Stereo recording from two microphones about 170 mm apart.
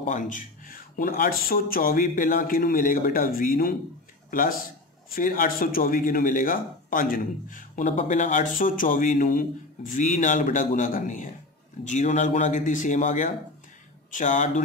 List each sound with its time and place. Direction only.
0.0 s a man's voice: 50° left (ahead or behind)